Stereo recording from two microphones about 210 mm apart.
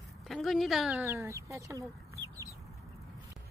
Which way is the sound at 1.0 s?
10° right (ahead or behind).